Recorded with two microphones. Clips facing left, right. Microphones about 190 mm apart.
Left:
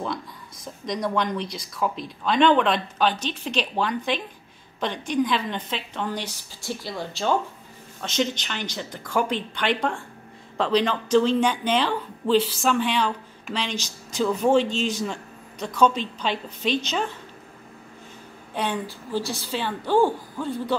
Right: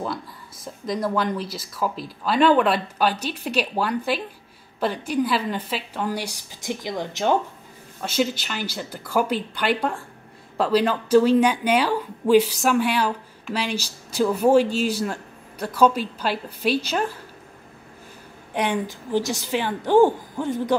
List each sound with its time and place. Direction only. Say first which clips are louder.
0.8 s speech: right 2 dB; 5° right (ahead or behind)
8.0 s speech: right 2 dB; 5° right (ahead or behind)
18.5 s speech: right 3 dB; 15° right (ahead or behind)